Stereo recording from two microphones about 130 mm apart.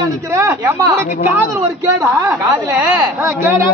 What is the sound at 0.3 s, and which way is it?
A man's voice, 25° right (ahead or behind).